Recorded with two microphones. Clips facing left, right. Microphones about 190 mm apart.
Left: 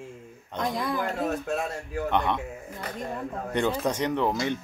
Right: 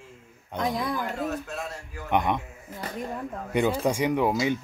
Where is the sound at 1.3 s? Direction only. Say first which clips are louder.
Left 4 dB; 55° left (ahead or behind).